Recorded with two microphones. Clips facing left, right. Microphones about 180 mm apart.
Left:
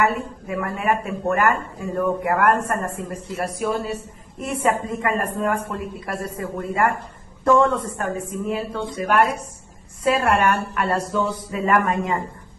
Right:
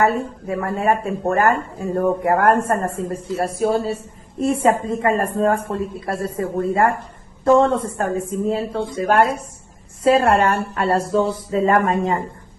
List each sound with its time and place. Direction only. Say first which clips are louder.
0.0 s speech: right 3 dB; 35° right (ahead or behind)